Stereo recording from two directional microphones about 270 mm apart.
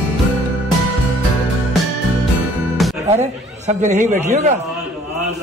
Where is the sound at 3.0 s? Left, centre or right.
Right.